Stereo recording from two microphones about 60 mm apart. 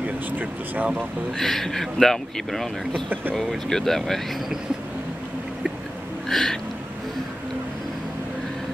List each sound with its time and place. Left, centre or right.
0.0 s speech: right
1.4 s speech: centre
6.2 s a sound: centre